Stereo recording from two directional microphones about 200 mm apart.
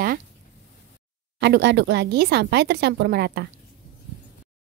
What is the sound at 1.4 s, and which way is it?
Speech, 60° right (ahead or behind).